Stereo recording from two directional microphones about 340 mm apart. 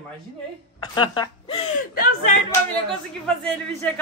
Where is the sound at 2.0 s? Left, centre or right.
Left.